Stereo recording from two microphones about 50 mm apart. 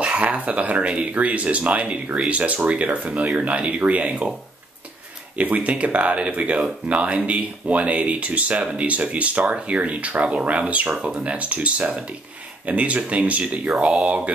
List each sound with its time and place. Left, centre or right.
0.0 s speech: right
5.4 s speech: right
10.9 s speech: centre